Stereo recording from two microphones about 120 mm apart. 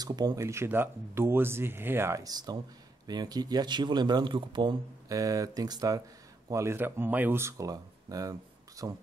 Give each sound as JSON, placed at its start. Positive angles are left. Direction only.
{"t": 0.0, "sound": "speech", "side_deg": -35}
{"t": 5.1, "sound": "speech", "side_deg": -30}